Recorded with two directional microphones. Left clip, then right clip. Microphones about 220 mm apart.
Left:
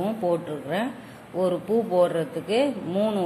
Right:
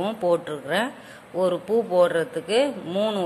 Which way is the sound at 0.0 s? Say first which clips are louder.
Right 3 dB; 20° right (ahead or behind).